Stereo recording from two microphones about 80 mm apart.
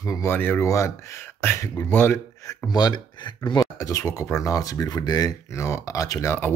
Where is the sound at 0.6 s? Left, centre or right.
Left.